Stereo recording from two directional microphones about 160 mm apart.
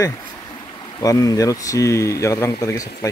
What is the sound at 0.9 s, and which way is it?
Speech, 20° left (ahead or behind).